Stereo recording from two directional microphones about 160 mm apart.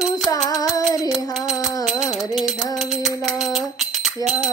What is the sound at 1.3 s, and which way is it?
Music, centre (ahead or behind).